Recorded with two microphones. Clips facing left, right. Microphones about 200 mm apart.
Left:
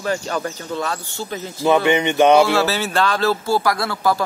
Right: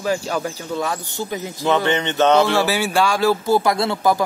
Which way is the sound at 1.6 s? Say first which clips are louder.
Left 3 dB; 10° left (ahead or behind).